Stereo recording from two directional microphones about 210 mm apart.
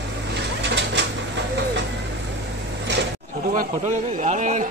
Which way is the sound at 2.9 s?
55° right (ahead or behind).